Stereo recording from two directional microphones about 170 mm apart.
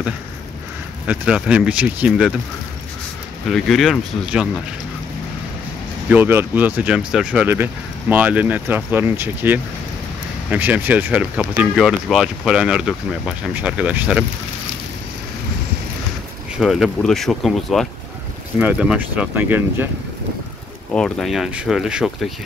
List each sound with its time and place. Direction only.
1.0 s speech: 5° right (ahead or behind)
3.4 s speech: centre (ahead or behind)
6.0 s speech: 10° right (ahead or behind)
16.5 s speech: centre (ahead or behind)
20.9 s speech: centre (ahead or behind)